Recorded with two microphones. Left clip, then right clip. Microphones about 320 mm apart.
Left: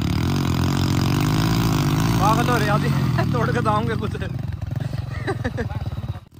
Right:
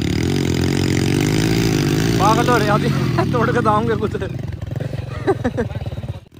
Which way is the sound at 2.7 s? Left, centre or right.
Right.